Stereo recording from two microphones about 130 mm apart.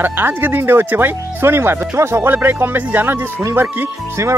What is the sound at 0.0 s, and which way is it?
Speech, 15° right (ahead or behind).